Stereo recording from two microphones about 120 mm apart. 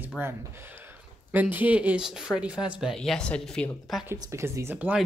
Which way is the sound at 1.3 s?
15° right (ahead or behind).